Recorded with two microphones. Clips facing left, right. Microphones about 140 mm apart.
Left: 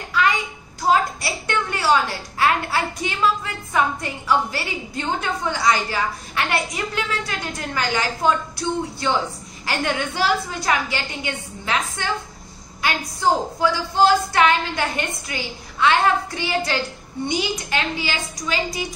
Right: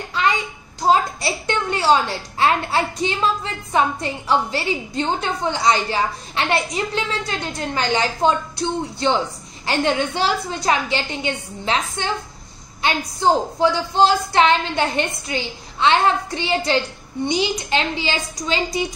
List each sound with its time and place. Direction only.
0.2 s child singing: 25° right (ahead or behind)
0.7 s a woman's voice: 25° right (ahead or behind)